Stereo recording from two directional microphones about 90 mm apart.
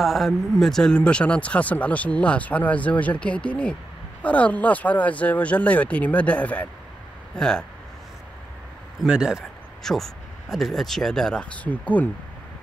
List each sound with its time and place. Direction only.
0.0 s speech: centre (ahead or behind)
9.0 s speech: 10° right (ahead or behind)
9.8 s speech: 5° left (ahead or behind)
11.6 s speech: 15° left (ahead or behind)